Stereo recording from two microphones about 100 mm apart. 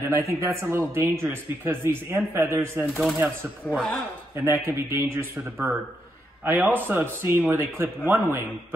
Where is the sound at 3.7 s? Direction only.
5° left (ahead or behind).